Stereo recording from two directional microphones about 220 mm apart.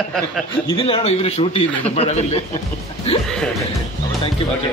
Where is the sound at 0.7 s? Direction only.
25° left (ahead or behind).